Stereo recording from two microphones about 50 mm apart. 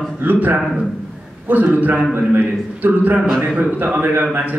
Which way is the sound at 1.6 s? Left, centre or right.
Right.